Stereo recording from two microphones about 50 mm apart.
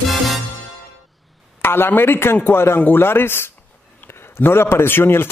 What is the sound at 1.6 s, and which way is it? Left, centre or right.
A man's voice, left.